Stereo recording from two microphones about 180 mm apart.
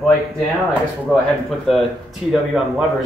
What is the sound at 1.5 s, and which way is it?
Speech, centre (ahead or behind).